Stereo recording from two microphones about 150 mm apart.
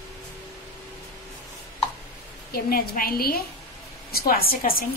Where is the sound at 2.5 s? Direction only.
80° left.